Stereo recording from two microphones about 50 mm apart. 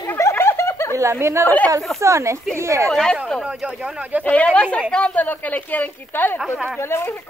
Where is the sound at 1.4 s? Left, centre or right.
Left.